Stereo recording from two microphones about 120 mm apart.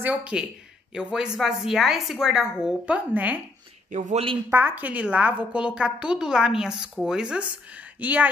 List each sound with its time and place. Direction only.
0.0 s a woman's voice: 10° right (ahead or behind)
3.9 s a man's voice: 90° right
4.5 s a woman's voice: 20° right (ahead or behind)